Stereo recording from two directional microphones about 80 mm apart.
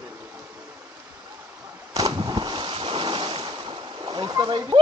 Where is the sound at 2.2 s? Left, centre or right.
Right.